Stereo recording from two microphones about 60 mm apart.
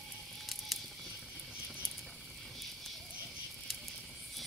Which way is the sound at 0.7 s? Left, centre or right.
Centre.